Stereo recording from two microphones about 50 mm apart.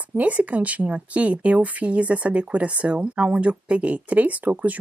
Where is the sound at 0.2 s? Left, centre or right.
Right.